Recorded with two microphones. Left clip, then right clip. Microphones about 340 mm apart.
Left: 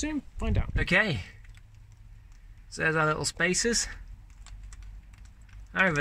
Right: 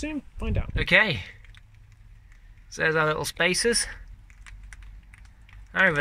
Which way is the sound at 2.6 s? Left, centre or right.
Centre.